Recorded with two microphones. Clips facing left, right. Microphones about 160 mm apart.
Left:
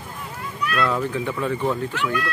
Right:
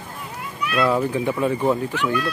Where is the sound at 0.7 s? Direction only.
10° right (ahead or behind).